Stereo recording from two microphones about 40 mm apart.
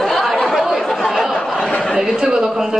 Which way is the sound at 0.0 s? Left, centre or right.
Centre.